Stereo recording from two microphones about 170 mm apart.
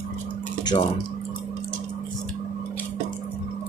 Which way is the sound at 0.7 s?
35° left (ahead or behind).